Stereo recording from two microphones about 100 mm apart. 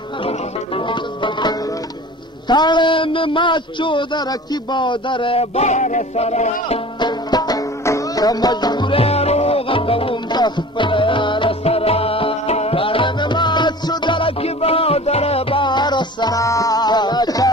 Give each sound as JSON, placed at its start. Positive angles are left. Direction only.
{"t": 0.7, "sound": "music", "side_deg": 55}
{"t": 2.4, "sound": "speech", "side_deg": 45}
{"t": 6.1, "sound": "music", "side_deg": 90}
{"t": 7.0, "sound": "music", "side_deg": 45}
{"t": 8.9, "sound": "music", "side_deg": 85}
{"t": 10.3, "sound": "music", "side_deg": 50}
{"t": 11.6, "sound": "music", "side_deg": 80}
{"t": 14.4, "sound": "music", "side_deg": 75}
{"t": 15.6, "sound": "music", "side_deg": 50}